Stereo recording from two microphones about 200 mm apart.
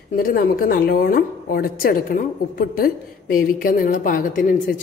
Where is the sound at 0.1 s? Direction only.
45° left (ahead or behind).